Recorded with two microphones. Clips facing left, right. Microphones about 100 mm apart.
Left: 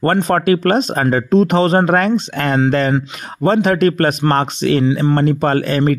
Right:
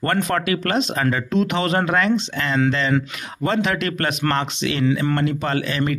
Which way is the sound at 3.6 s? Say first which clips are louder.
Left 9 dB; 45° left (ahead or behind).